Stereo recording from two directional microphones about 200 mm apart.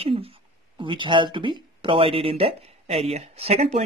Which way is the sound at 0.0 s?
30° right (ahead or behind).